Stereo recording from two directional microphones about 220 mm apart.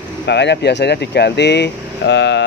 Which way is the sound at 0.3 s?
50° left (ahead or behind).